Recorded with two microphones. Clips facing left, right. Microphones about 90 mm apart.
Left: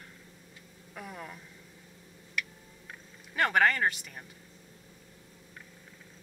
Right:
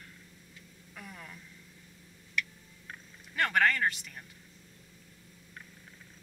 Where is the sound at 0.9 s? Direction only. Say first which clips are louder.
Left 5 dB; 15° left (ahead or behind).